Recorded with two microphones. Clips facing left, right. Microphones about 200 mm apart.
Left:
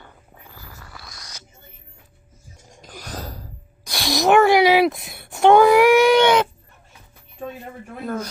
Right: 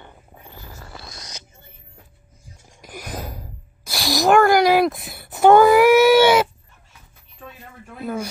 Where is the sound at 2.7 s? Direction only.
10° right (ahead or behind).